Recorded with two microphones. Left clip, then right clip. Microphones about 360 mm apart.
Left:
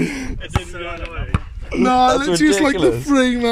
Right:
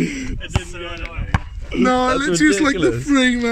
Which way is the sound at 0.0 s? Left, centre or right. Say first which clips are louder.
Left 1 dB; centre.